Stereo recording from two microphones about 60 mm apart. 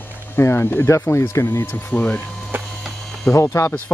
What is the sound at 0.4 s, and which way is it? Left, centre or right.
Speech, left.